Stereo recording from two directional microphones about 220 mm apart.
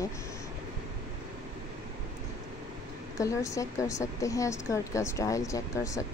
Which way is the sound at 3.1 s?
15° left (ahead or behind).